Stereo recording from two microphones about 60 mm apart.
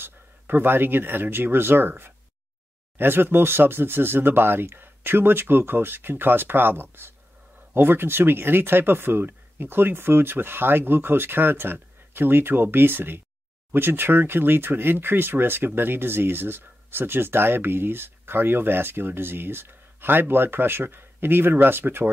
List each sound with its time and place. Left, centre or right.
0.0 s speech: right